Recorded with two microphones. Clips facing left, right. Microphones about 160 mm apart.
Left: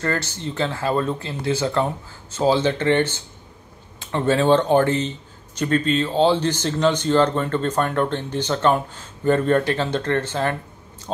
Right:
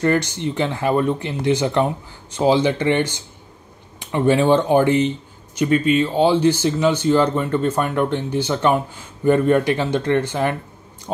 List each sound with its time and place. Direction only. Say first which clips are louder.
0.0 s speech: right 6 dB; 15° right (ahead or behind)